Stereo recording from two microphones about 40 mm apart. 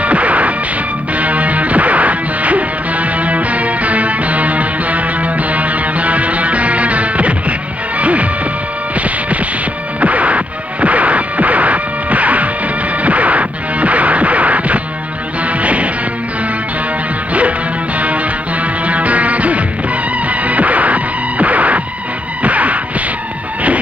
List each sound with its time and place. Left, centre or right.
0.0 s music: right
17.3 s music: right